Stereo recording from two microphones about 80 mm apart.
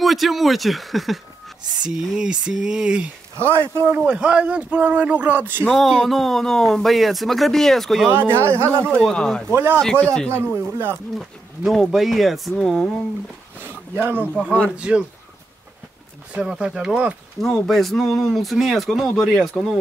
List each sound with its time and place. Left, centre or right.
0.0 s speech: centre
3.5 s speech: right
4.0 s speech: centre
5.7 s speech: centre
8.1 s speech: right
9.1 s a man's voice: centre
9.5 s speech: right
9.9 s a man's voice: centre
10.3 s speech: right
11.1 s speech: centre
13.6 s a sound: right
14.8 s speech: centre
16.3 s speech: centre
17.4 s speech: centre